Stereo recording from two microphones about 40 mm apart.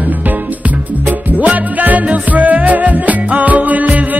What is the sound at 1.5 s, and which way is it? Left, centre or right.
Music, right.